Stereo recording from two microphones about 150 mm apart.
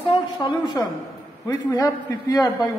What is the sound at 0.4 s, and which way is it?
A man's voice, 25° left (ahead or behind).